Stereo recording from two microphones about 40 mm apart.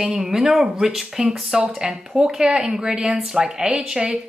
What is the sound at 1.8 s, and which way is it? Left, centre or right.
Speech, centre.